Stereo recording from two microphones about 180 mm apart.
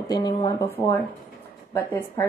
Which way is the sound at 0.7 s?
10° left (ahead or behind).